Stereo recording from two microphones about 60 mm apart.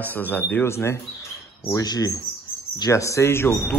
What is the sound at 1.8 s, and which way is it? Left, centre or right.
Speech, left.